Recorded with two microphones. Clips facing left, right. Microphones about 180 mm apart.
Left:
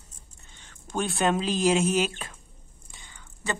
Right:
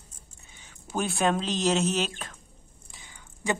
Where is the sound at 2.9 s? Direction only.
10° right (ahead or behind).